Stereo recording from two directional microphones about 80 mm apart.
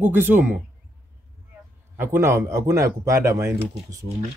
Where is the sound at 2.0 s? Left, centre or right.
Right.